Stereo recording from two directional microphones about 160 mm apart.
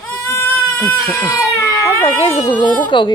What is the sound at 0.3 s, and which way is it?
Baby cry, 15° left (ahead or behind).